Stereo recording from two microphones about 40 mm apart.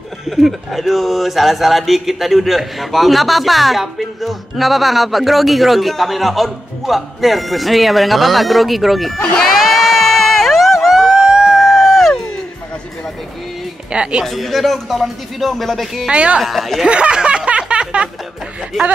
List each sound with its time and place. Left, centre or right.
0.4 s speech: centre
9.6 s a sound: centre
11.0 s a sound: centre
13.9 s speech: right
14.2 s speech: centre
16.1 s speech: right
16.3 s speech: centre
16.8 s speech: right
17.5 s a sound: right
18.8 s speech: centre